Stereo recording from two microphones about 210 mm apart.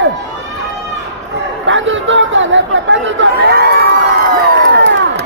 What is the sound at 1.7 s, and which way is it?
Speech, 65° right (ahead or behind).